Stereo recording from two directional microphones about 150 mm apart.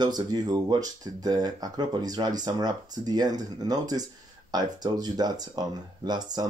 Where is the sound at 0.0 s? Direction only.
25° right (ahead or behind).